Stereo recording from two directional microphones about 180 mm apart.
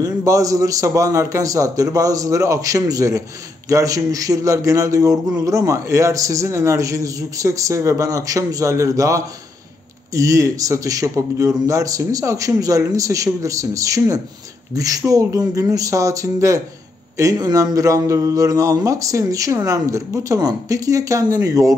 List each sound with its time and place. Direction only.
0.0 s a man's voice: 20° right (ahead or behind)